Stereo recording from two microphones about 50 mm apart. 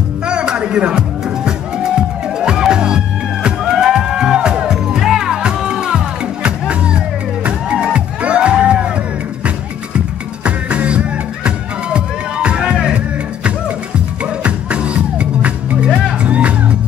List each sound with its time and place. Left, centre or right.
0.3 s music: centre
9.9 s music: right